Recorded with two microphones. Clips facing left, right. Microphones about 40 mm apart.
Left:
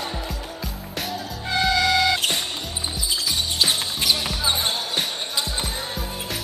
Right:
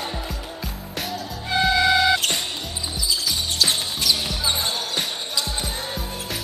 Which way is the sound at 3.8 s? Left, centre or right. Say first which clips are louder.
Even; centre.